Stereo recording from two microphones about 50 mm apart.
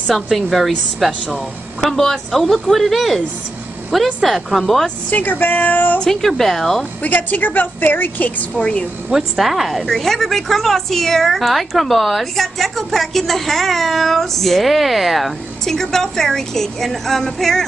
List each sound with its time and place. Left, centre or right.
0.1 s a woman's voice: centre
5.1 s a woman's voice: left
6.0 s a woman's voice: centre
7.0 s a woman's voice: left
9.1 s a woman's voice: centre